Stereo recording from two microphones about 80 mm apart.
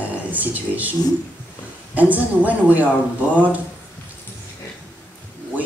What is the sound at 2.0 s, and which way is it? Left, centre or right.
Speech, right.